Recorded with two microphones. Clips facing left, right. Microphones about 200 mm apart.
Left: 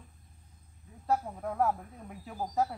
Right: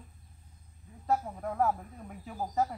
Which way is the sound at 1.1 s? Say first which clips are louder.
Even; centre (ahead or behind).